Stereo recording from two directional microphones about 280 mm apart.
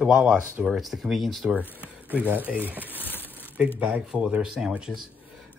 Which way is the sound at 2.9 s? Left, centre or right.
Centre.